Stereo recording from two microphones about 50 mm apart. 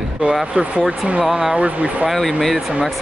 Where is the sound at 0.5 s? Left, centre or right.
Centre.